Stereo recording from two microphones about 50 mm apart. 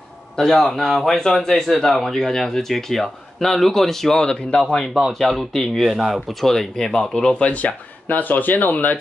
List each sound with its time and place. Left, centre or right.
0.4 s speech: centre
4.6 s speech: centre
5.9 s speech: centre
6.4 s speech: centre
7.4 s speech: left